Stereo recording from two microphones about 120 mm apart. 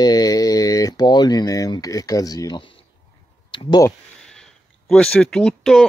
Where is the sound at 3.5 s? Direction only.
40° left (ahead or behind).